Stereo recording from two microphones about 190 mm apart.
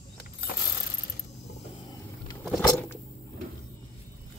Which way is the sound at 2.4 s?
Centre (ahead or behind).